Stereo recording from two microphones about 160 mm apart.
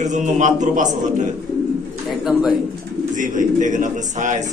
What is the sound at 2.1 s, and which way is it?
Speech, 5° right (ahead or behind).